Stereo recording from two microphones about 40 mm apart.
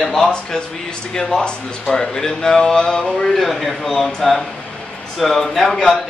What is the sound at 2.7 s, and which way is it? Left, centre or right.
Male singing, left.